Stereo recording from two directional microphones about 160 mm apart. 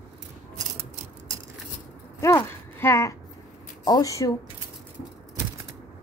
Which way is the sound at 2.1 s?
20° left (ahead or behind).